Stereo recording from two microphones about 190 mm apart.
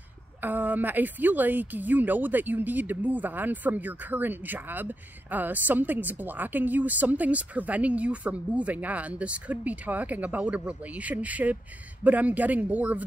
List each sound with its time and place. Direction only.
0.4 s a woman's voice: 10° right (ahead or behind)